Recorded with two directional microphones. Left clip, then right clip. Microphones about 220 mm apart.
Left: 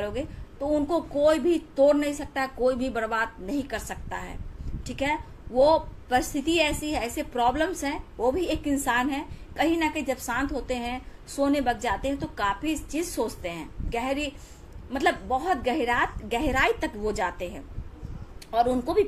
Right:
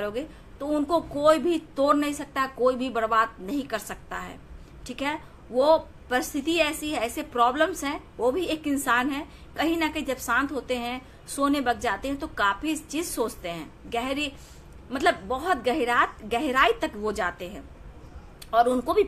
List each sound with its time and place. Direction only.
0.7 s a woman's voice: 15° right (ahead or behind)